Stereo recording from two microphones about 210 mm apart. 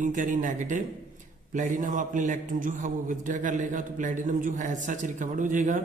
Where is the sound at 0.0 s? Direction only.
35° right (ahead or behind).